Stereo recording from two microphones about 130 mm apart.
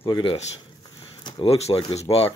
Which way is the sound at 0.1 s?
45° left (ahead or behind).